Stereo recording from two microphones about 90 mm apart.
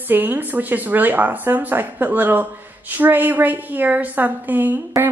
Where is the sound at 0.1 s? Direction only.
20° right (ahead or behind).